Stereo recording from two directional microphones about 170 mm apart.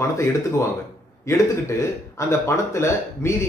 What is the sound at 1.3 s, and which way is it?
Speech, 15° left (ahead or behind).